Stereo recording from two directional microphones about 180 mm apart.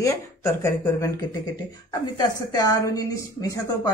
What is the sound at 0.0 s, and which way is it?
A woman's voice, 15° left (ahead or behind).